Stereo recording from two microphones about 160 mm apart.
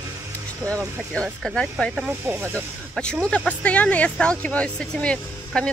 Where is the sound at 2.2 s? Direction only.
15° right (ahead or behind).